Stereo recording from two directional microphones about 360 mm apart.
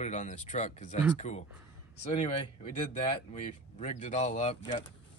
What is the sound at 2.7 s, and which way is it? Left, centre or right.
Speech, centre.